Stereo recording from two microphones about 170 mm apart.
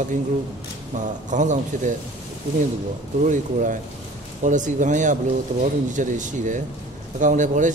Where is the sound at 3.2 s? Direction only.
50° right (ahead or behind).